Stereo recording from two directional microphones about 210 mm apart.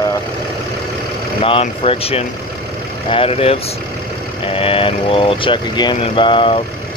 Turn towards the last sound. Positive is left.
turn(degrees=25)  # may be behind; listen again after turning